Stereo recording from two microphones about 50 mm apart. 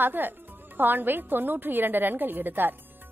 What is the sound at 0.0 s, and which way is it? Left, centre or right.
A woman's voice, right.